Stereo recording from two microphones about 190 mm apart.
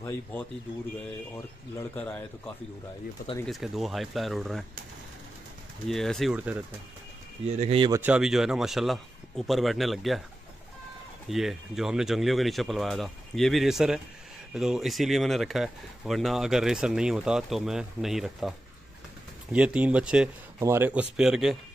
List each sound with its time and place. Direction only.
0.0 s speech: 10° left (ahead or behind)
5.9 s speech: centre (ahead or behind)
7.4 s speech: 30° right (ahead or behind)
7.9 s speech: 10° right (ahead or behind)
11.2 s speech: centre (ahead or behind)
19.5 s speech: 5° right (ahead or behind)